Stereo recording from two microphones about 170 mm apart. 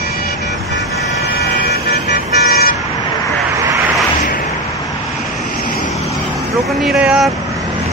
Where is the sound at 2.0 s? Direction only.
70° left (ahead or behind).